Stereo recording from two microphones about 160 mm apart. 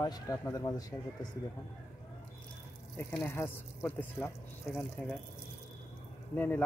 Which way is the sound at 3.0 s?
15° left (ahead or behind).